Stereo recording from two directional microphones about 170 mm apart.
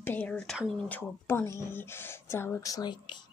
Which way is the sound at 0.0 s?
10° left (ahead or behind).